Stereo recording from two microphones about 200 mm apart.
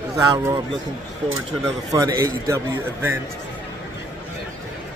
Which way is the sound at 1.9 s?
15° right (ahead or behind).